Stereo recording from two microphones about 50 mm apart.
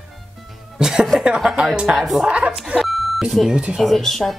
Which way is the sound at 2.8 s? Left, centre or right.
Centre.